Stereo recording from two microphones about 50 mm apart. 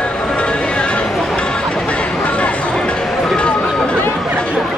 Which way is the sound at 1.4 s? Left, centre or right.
Centre.